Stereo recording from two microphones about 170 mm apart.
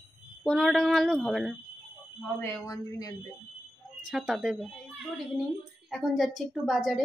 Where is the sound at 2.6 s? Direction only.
20° left (ahead or behind).